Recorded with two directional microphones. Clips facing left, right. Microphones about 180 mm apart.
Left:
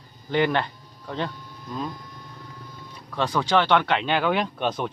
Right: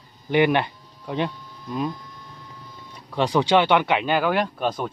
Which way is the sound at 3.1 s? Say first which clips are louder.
Right 3 dB; 15° right (ahead or behind).